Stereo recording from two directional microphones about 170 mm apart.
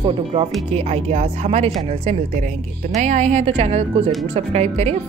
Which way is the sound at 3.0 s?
45° right (ahead or behind).